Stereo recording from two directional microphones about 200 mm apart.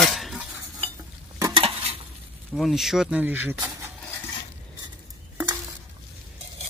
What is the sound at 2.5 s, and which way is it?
Speech, centre (ahead or behind).